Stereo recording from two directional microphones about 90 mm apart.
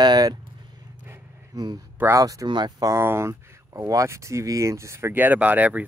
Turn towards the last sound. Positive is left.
turn(degrees=-15)  # may be behind; listen again after turning